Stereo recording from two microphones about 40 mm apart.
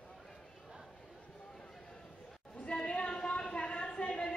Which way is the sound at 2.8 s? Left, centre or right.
Left.